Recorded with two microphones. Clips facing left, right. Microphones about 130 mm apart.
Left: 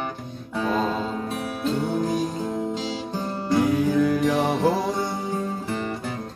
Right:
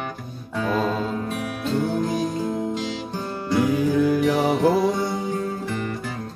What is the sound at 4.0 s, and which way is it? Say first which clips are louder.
Mantra: right 1 dB; 5° right (ahead or behind).